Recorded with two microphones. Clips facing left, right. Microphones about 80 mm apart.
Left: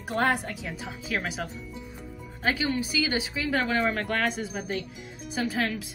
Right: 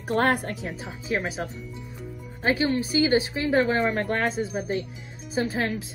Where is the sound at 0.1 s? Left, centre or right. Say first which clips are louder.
Right 3 dB; right.